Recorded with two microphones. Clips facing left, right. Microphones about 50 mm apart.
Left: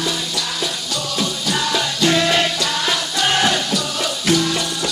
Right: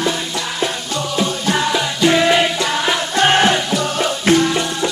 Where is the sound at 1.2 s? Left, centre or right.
Right.